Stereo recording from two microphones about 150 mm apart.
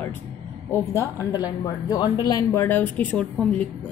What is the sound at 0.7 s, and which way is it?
A woman's voice, 20° left (ahead or behind).